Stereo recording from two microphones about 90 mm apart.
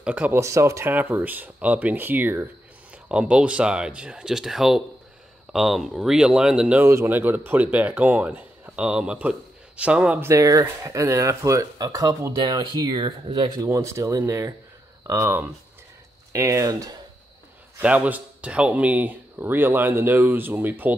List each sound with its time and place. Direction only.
0.0 s speech: 15° right (ahead or behind)
0.3 s speech: 30° right (ahead or behind)
0.9 s speech: 20° right (ahead or behind)
6.8 s speech: 35° right (ahead or behind)
7.1 s speech: 20° right (ahead or behind)
10.2 s speech: 40° right (ahead or behind)
13.7 s speech: 35° right (ahead or behind)
17.8 s speech: 15° right (ahead or behind)